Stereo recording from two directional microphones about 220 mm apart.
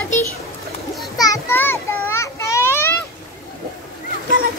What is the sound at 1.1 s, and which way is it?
Children playing, 15° left (ahead or behind).